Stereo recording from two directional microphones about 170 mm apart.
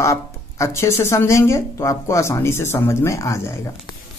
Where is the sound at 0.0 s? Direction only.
15° left (ahead or behind).